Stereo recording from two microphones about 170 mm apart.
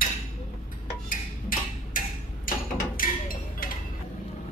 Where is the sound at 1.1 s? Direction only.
55° left (ahead or behind).